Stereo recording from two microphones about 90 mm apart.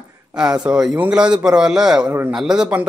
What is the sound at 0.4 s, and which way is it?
A man's voice, 10° right (ahead or behind).